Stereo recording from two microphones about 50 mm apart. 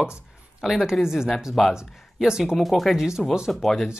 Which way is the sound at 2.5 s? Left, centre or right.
Centre.